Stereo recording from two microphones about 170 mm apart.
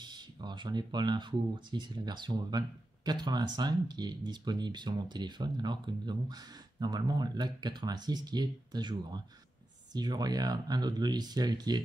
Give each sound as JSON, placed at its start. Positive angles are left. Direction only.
{"t": 0.0, "sound": "speech", "side_deg": -25}